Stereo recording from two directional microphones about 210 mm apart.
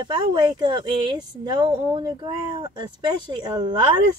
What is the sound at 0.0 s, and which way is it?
Speech, 20° right (ahead or behind).